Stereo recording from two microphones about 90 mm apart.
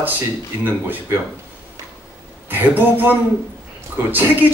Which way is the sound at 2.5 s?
20° right (ahead or behind).